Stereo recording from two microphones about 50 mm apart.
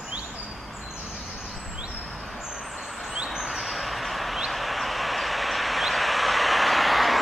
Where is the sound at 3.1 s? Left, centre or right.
Centre.